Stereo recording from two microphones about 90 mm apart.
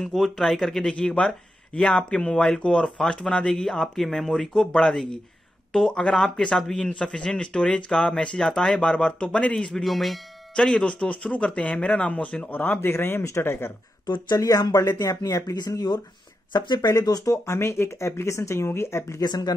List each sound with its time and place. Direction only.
0.0 s speech: 5° left (ahead or behind); by 13.7 s 25° left (ahead or behind)
14.0 s speech: 50° left (ahead or behind)
16.9 s speech: 40° left (ahead or behind)
19.2 s speech: 50° left (ahead or behind)